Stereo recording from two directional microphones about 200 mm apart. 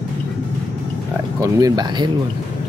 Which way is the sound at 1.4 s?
20° right (ahead or behind).